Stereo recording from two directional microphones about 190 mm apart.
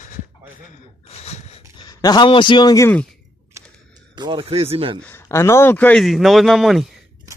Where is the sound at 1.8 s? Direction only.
20° left (ahead or behind).